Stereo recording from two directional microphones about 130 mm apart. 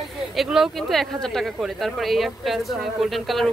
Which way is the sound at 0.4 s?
Centre (ahead or behind).